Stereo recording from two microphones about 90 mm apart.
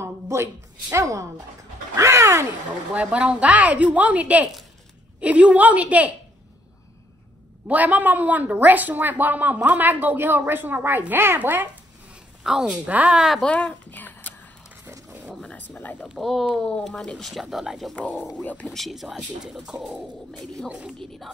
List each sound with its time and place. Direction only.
0.0 s a woman's voice: 30° right (ahead or behind)
2.0 s a sound: 35° right (ahead or behind)
2.9 s speech: 15° right (ahead or behind)
7.6 s speech: 20° right (ahead or behind)
12.1 s a sound: 5° right (ahead or behind)
12.8 s speech: 15° right (ahead or behind)
13.4 s speech: 15° left (ahead or behind)
14.9 s a sound: 30° right (ahead or behind)
15.3 s speech: 15° left (ahead or behind)
16.2 s speech: centre (ahead or behind)
18.2 s speech: 15° left (ahead or behind)
18.8 s speech: 5° right (ahead or behind)
21.0 s speech: 5° left (ahead or behind)